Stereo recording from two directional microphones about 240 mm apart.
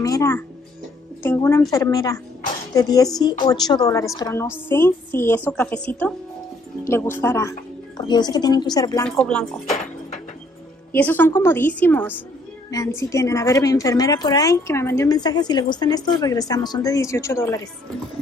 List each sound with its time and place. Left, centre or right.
0.0 s a woman's voice: centre
9.0 s speech: centre
10.9 s a woman's voice: centre